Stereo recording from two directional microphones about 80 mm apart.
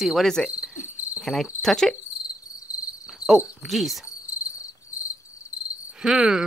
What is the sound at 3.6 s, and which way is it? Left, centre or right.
Cricket, centre.